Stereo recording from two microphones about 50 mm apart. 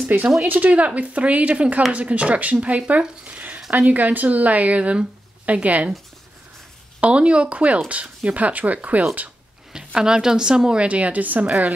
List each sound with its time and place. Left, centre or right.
0.0 s speech: right
0.5 s speech: right
3.3 s a sound: right
3.7 s speech: right
7.0 s speech: right
9.7 s a woman's voice: centre
10.9 s speech: right